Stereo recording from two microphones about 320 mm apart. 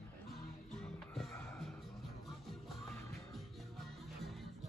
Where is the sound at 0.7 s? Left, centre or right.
Centre.